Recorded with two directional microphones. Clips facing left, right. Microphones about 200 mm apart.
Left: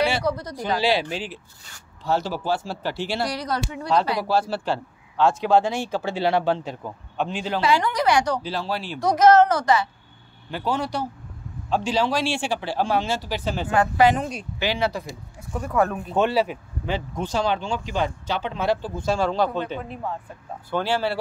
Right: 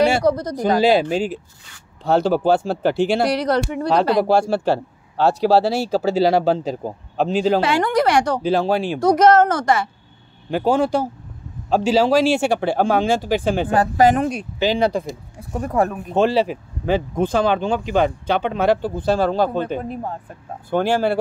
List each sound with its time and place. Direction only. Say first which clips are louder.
0.0 s a woman's voice: right 7 dB; 45° right (ahead or behind)
2.0 s speech: right 8 dB; 55° right (ahead or behind)
4.6 s speech: right 7 dB; 40° right (ahead or behind)
7.6 s a woman's voice: right 3 dB; 55° right (ahead or behind)
12.4 s a woman's voice: right 7 dB; 60° right (ahead or behind)
14.8 s speech: right 6 dB; 30° right (ahead or behind)
16.8 s speech: right 9 dB; 50° right (ahead or behind)
19.1 s a woman's voice: right 3 dB; 50° right (ahead or behind)